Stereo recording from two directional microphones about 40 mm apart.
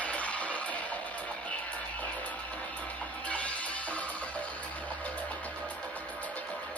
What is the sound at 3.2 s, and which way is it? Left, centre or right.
Music, left.